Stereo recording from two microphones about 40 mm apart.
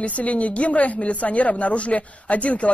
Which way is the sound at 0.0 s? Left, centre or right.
Left.